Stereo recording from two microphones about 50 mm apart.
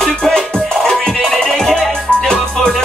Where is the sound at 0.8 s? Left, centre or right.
Centre.